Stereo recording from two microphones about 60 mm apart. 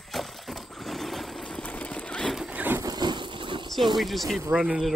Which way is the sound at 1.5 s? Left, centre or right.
Left.